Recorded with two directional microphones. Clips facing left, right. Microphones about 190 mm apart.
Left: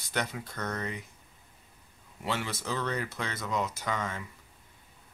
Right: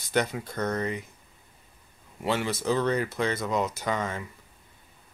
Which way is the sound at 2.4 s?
40° right (ahead or behind).